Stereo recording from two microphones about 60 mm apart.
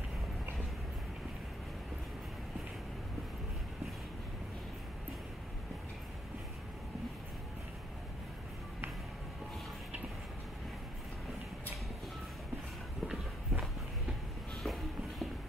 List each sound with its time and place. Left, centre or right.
13.5 s walk: centre
14.6 s shuffle: centre